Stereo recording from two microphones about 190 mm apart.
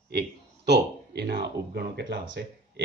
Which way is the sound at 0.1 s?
60° right (ahead or behind).